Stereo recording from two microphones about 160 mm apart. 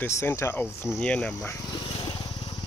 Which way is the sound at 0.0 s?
15° left (ahead or behind).